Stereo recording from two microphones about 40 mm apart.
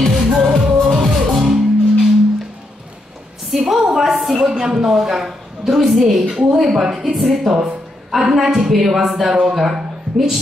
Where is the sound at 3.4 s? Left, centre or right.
Centre.